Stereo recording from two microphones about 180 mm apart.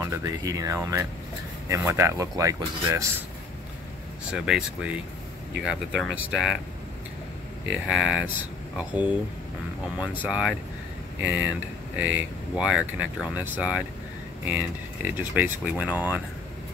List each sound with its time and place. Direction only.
0.0 s speech: 20° right (ahead or behind)
4.3 s speech: 5° right (ahead or behind)
7.7 s speech: 5° right (ahead or behind)